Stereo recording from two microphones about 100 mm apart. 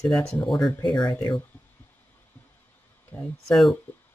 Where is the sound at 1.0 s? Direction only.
40° left (ahead or behind).